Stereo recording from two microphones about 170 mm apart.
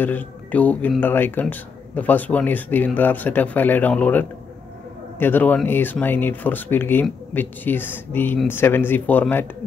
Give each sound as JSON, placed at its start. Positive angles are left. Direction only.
{"t": 0.0, "sound": "speech", "side_deg": 10}